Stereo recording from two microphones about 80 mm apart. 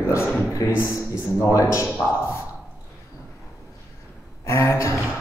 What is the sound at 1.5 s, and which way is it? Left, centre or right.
Speech, left.